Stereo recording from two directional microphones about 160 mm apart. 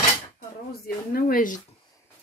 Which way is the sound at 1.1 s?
65° left (ahead or behind).